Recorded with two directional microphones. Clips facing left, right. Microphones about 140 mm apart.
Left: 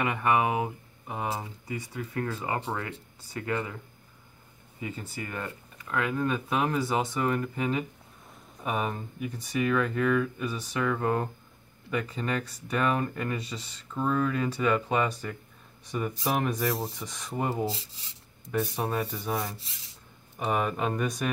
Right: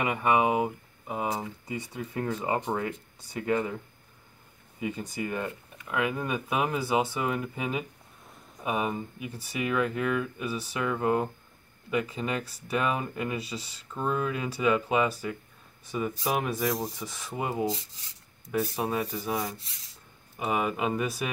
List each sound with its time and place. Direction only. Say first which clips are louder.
0.0 s speech: right 1 dB; 10° right (ahead or behind)
1.7 s speech: left 2 dB; 20° right (ahead or behind)
4.7 s speech: right 4 dB; 15° right (ahead or behind)